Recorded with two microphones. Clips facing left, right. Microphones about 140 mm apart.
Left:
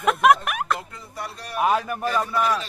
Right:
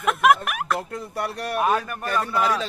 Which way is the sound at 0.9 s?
65° right (ahead or behind).